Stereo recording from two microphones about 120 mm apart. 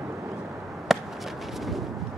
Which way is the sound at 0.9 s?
Centre (ahead or behind).